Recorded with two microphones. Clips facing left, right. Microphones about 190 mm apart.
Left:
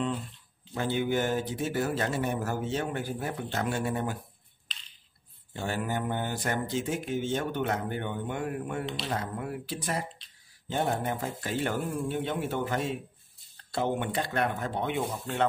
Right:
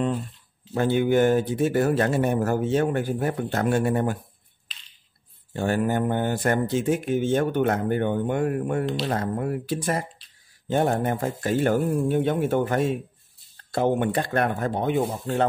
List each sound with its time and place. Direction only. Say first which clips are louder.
0.7 s speech: right 8 dB; 55° right (ahead or behind)
5.5 s speech: right 8 dB; 50° right (ahead or behind)